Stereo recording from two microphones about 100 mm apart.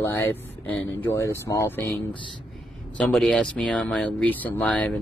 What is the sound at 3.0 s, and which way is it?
Speech, 5° left (ahead or behind).